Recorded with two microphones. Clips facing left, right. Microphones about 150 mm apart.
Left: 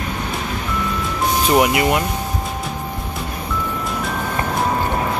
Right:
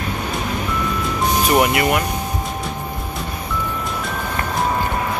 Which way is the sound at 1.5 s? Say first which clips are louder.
Left 1 dB; 20° left (ahead or behind).